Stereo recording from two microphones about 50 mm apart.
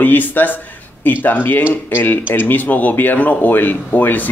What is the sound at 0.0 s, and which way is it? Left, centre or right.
Speech, left.